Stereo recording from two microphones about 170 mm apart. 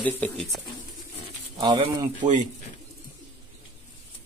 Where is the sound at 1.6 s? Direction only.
30° right (ahead or behind).